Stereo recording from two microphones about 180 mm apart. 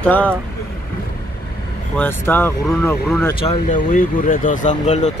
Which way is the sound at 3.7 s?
50° left (ahead or behind).